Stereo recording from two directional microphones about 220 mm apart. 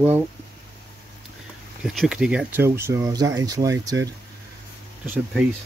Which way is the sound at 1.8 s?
Centre (ahead or behind).